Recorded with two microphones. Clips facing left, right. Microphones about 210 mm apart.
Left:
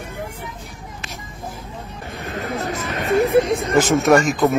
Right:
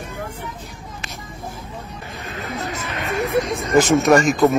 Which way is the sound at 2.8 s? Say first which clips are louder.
Left 8 dB; 30° left (ahead or behind).